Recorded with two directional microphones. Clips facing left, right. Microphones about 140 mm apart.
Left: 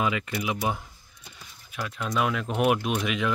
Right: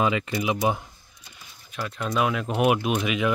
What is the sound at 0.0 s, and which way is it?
Speech, 25° right (ahead or behind).